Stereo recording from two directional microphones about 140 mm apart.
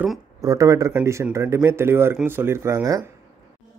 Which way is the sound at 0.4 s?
25° right (ahead or behind).